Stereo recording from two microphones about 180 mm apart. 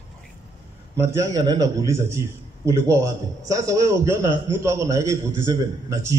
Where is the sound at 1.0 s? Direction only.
15° right (ahead or behind).